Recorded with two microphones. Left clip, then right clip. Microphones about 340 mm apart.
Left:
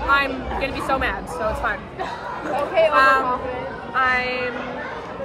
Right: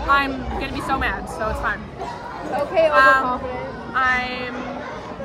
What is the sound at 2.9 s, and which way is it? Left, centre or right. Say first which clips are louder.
A woman's voice: right 4 dB; centre.